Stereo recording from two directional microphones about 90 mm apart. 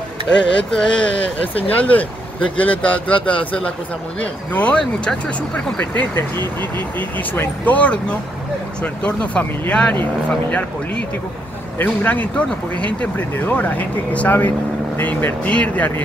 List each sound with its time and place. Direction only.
0.4 s speech: 10° left (ahead or behind)
11.8 s speech: 20° left (ahead or behind)